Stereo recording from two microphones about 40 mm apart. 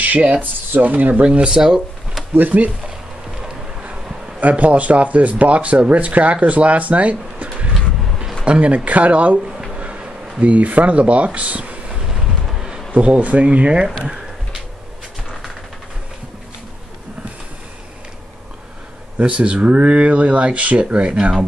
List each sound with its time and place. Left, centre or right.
0.0 s speech: right
1.2 s speech: right
1.5 s speech: centre
2.3 s speech: right
3.8 s speech: right
7.4 s vehicle: right
8.5 s speech: right
9.5 s a sound: centre
9.8 s bee: right
10.4 s speech: right
12.1 s vehicle: centre
12.9 s speech: right
14.0 s a sound: centre
19.1 s speech: right